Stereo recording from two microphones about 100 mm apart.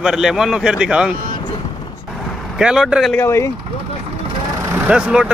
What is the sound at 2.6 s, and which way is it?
Speech, 10° right (ahead or behind).